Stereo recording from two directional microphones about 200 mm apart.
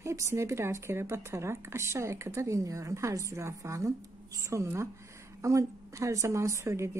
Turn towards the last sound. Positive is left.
turn(degrees=-15)  # may be behind; listen again after turning